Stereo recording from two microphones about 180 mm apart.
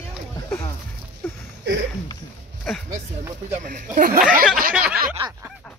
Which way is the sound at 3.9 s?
45° right (ahead or behind).